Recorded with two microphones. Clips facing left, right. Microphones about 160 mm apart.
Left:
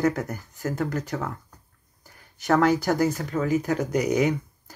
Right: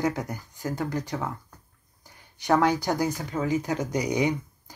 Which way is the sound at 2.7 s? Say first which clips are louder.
Left 3 dB; 20° right (ahead or behind).